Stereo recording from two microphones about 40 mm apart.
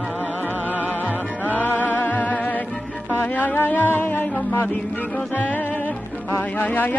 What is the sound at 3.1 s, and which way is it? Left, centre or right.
Speech, left.